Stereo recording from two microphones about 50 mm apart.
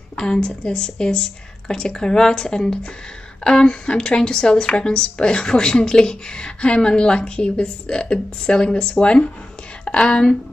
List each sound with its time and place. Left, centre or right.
0.1 s a woman's voice: centre